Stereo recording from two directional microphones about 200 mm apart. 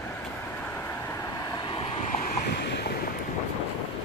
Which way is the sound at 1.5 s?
25° left (ahead or behind).